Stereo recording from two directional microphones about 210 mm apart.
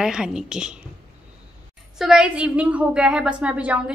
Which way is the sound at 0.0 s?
5° right (ahead or behind).